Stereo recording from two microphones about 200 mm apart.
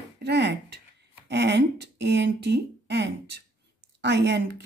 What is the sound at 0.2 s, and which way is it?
Speech, 55° right (ahead or behind).